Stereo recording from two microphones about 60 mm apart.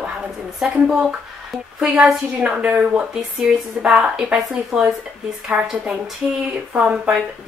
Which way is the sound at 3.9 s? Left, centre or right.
Centre.